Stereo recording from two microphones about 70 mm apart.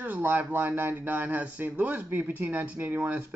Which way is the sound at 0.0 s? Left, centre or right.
Right.